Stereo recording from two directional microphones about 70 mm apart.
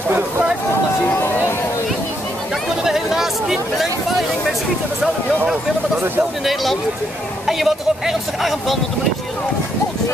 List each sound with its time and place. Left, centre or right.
1.0 s a sound: left
2.8 s speech: centre
6.4 s speech: centre